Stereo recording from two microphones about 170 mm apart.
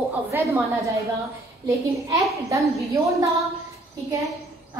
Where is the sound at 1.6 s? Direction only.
20° right (ahead or behind).